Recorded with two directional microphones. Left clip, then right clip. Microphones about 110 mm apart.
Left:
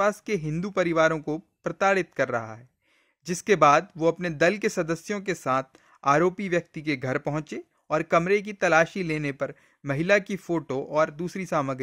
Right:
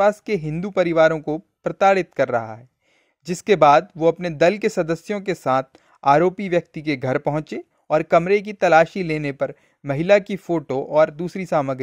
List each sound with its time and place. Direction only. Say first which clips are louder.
0.0 s speech: right 6 dB; 30° right (ahead or behind)